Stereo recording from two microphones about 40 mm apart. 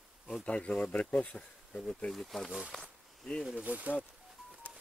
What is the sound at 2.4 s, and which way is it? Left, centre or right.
Speech, right.